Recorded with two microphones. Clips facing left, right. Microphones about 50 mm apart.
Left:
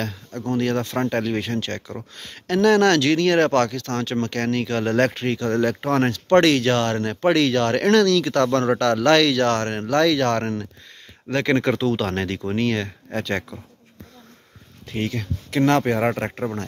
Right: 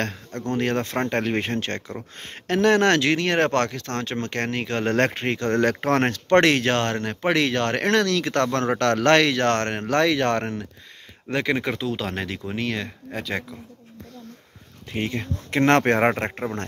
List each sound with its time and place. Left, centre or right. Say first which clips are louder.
0.0 s speech: even; right
8.7 s speech: right 1 dB; right; by 10.7 s centre
11.4 s speech: left 7 dB; centre
14.9 s speech: left 1 dB; right
15.6 s speech: right 1 dB; right
16.1 s speech: even; right